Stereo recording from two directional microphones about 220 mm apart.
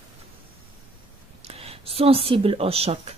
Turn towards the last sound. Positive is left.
turn(degrees=-25)  # may be behind; listen again after turning